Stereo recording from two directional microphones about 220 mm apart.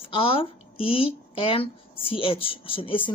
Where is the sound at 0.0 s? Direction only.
25° left (ahead or behind).